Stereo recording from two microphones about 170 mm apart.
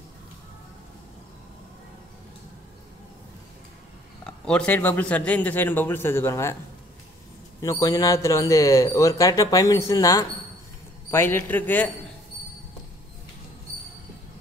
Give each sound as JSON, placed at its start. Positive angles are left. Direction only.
{"t": 4.5, "sound": "a man's voice", "side_deg": 5}
{"t": 7.6, "sound": "a man's voice", "side_deg": 20}